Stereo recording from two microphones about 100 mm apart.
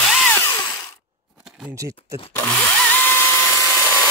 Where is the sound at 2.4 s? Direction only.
15° left (ahead or behind).